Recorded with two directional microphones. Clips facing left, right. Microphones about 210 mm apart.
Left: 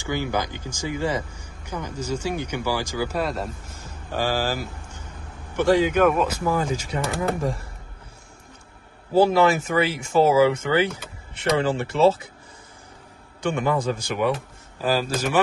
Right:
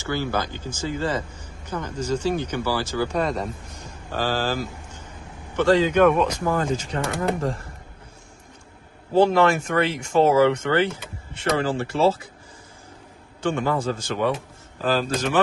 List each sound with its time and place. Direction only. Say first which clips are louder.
0.0 s speech: even; 15° left (ahead or behind)
9.1 s speech: even; 5° left (ahead or behind)
11.5 s speech: left 1 dB; 20° left (ahead or behind)
13.4 s speech: even; 15° left (ahead or behind)